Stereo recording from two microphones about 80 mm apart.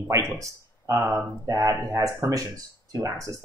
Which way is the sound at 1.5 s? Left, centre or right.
Right.